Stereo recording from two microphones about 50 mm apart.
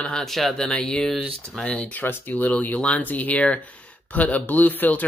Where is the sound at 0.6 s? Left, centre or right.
Left.